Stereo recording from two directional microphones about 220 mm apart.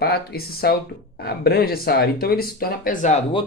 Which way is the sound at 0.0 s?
45° left (ahead or behind).